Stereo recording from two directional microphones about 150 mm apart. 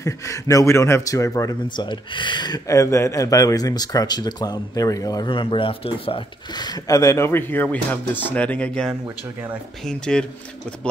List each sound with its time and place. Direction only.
0.0 s speech: 20° left (ahead or behind); by 10.2 s 5° left (ahead or behind)